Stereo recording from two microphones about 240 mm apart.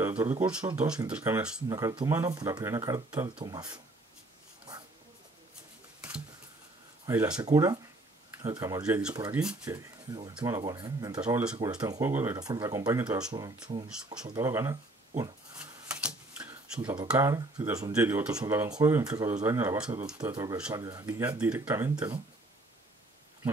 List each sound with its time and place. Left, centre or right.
0.0 s speech: centre
5.9 s a sound: centre
7.1 s speech: centre
13.3 s speech: centre
15.6 s a sound: centre
16.8 s speech: centre